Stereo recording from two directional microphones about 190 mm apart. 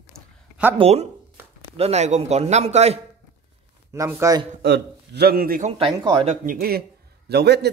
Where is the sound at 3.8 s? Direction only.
15° right (ahead or behind).